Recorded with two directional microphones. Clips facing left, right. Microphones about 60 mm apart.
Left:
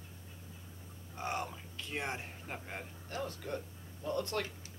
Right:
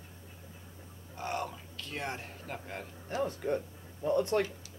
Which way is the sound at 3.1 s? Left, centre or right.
Right.